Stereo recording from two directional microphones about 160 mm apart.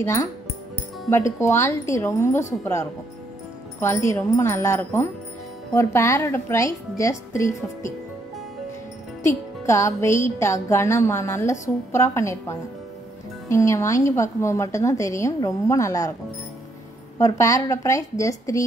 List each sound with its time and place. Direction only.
0.0 s a woman's voice: 20° left (ahead or behind)
9.7 s a woman's voice: 20° left (ahead or behind)
17.2 s a woman's voice: 20° left (ahead or behind)